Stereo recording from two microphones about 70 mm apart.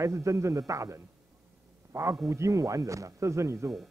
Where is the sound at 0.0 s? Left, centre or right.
Right.